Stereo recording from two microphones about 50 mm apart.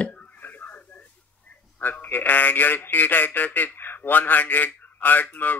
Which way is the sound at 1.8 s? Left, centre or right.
Left.